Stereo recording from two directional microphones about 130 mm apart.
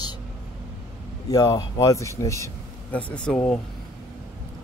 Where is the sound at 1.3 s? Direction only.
30° left (ahead or behind).